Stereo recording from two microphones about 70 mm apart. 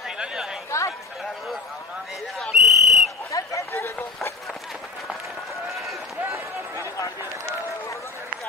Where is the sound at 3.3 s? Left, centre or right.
Left.